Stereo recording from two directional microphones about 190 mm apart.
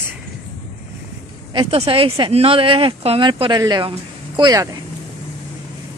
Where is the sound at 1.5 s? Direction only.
25° right (ahead or behind).